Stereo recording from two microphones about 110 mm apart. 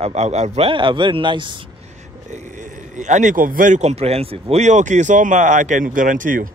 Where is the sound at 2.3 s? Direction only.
90° right.